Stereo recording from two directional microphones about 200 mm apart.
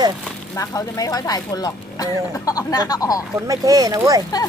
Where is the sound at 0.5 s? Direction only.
15° left (ahead or behind).